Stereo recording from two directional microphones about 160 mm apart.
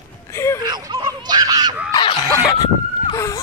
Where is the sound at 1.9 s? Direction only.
30° left (ahead or behind).